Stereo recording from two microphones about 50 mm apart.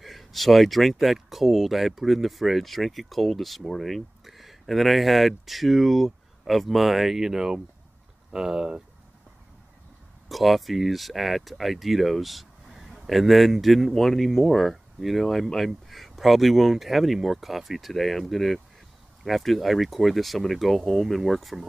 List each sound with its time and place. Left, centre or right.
0.0 s speech: centre
10.2 s speech: centre